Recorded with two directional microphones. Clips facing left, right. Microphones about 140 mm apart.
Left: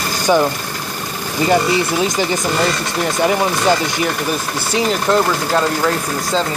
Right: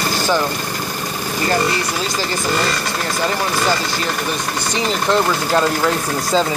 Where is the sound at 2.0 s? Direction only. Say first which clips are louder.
Left 4 dB; 20° left (ahead or behind).